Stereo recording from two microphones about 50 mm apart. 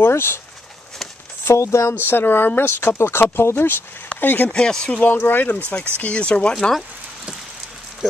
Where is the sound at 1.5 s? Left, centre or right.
Left.